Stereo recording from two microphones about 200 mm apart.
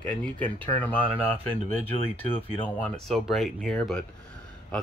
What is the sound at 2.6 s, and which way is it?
Speech, 5° left (ahead or behind).